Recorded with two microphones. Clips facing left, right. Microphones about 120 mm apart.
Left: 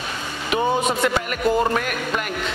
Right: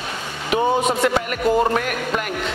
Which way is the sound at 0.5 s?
25° right (ahead or behind).